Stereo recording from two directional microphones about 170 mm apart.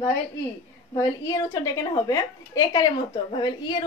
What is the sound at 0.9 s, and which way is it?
A woman's voice, 20° left (ahead or behind).